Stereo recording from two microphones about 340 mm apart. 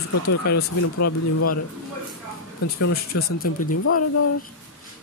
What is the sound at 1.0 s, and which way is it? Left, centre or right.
Speech, left.